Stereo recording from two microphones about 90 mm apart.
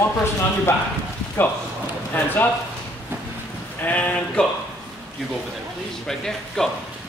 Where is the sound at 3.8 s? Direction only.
20° left (ahead or behind).